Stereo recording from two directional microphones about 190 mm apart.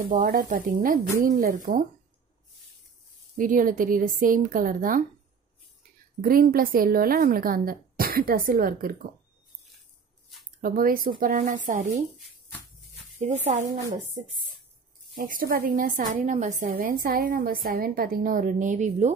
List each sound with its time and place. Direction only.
0.0 s a woman's voice: 45° right (ahead or behind)
3.3 s a woman's voice: 45° right (ahead or behind)
6.2 s a woman's voice: 50° right (ahead or behind)
10.6 s a woman's voice: 50° right (ahead or behind)
13.2 s speech: 35° right (ahead or behind)
13.7 s speech: 15° right (ahead or behind)
15.1 s a woman's voice: 50° right (ahead or behind)